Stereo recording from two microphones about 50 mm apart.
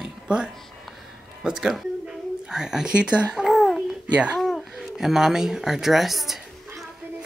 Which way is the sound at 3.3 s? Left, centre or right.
Centre.